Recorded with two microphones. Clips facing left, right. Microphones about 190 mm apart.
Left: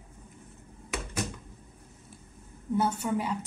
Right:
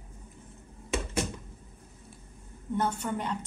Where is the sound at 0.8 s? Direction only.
25° right (ahead or behind).